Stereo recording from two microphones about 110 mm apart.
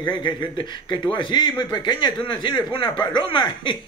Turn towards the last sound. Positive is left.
turn(degrees=45)  # may be behind; listen again after turning